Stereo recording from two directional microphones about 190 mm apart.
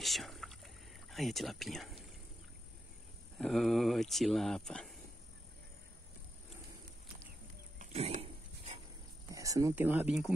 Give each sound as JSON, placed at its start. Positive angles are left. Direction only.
{"t": 0.0, "sound": "rowboat", "side_deg": 0}
{"t": 1.1, "sound": "speech", "side_deg": 0}
{"t": 3.3, "sound": "speech", "side_deg": 0}
{"t": 7.8, "sound": "dog", "side_deg": -35}
{"t": 9.3, "sound": "speech", "side_deg": -15}